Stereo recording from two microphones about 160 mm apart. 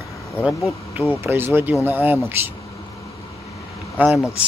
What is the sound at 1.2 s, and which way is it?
Speech, 15° right (ahead or behind).